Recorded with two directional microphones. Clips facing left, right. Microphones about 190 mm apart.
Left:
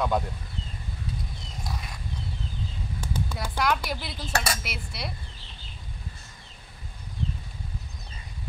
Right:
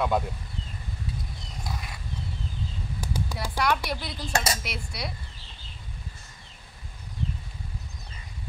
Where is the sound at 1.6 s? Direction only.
Centre (ahead or behind).